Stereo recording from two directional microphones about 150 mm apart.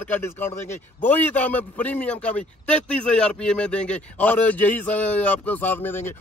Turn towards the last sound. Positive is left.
turn(degrees=15)  # may be behind; listen again after turning